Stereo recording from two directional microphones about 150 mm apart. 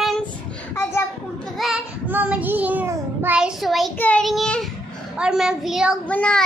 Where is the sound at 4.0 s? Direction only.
5° left (ahead or behind).